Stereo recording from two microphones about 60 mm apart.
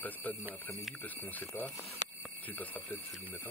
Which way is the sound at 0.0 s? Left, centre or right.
Left.